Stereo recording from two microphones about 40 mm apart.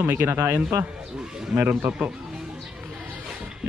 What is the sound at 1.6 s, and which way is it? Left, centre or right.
Speech, right.